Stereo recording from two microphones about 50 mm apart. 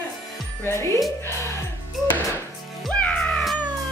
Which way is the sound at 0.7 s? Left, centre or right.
Left.